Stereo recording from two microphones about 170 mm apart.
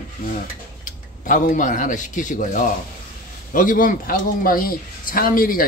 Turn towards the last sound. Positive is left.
turn(degrees=60)  # may be behind; listen again after turning